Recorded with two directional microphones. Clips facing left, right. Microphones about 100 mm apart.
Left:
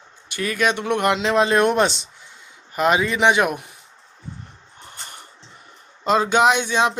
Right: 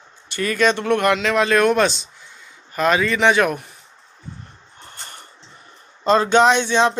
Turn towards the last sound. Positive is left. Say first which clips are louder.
# right 2 dB
turn(degrees=10)  # may be behind; listen again after turning